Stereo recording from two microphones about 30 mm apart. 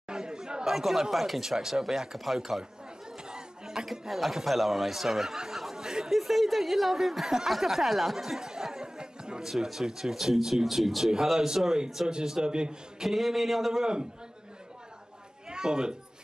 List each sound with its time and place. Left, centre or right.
0.1 s chatter: right
0.7 s speech: centre
2.1 s speech: centre
3.3 s a sound: right
4.1 s speech: centre
5.5 s chatter: centre
5.8 s chatter: right
6.0 s speech: centre
8.7 s chatter: right
9.5 s speech: centre
11.3 s a man's voice: centre
13.0 s speech: centre
15.5 s speech: right